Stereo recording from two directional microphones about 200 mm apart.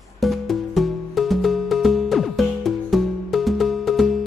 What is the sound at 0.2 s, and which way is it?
Music, centre (ahead or behind).